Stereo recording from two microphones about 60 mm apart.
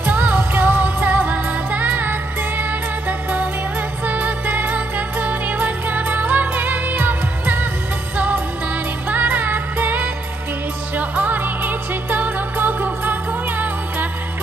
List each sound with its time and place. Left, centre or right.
0.0 s music: right
9.1 s music: right